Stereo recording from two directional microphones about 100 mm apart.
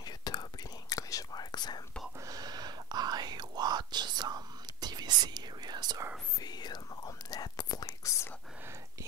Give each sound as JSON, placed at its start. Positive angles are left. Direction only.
{"t": 0.0, "sound": "whispering", "side_deg": 45}
{"t": 2.2, "sound": "whispering", "side_deg": -40}
{"t": 6.4, "sound": "whispering", "side_deg": 45}